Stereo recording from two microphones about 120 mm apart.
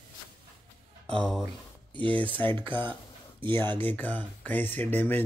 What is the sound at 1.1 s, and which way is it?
Speech, 5° left (ahead or behind).